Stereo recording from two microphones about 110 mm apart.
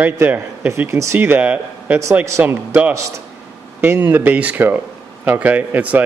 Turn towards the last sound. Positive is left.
turn(degrees=-15)  # may be behind; listen again after turning